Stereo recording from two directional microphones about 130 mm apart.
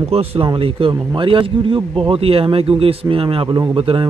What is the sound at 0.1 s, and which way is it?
A man's voice, 50° right (ahead or behind).